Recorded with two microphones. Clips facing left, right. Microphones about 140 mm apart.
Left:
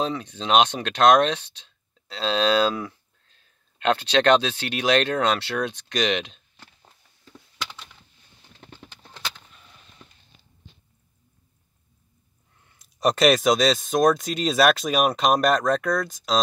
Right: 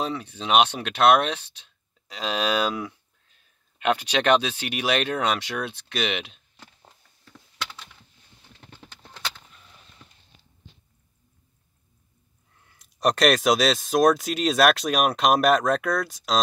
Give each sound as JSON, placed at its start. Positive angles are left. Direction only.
{"t": 0.0, "sound": "speech", "side_deg": -10}
{"t": 12.6, "sound": "speech", "side_deg": 0}